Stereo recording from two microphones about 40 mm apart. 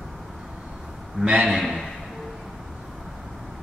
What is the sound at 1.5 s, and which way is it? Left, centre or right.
Speech, centre.